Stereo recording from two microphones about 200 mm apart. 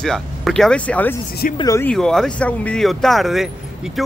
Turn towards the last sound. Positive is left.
turn(degrees=0)  # may be behind; listen again after turning